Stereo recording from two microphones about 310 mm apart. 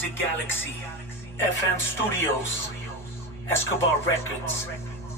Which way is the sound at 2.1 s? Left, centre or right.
Centre.